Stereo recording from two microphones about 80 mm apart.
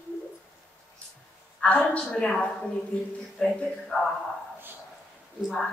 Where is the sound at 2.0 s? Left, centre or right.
Centre.